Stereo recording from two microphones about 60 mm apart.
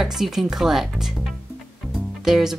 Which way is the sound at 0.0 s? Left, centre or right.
Centre.